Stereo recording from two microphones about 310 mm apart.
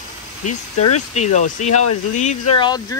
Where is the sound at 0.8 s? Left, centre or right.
Left.